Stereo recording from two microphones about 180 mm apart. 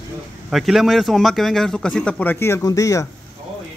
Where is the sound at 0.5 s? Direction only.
Centre (ahead or behind); by 3.0 s 20° left (ahead or behind).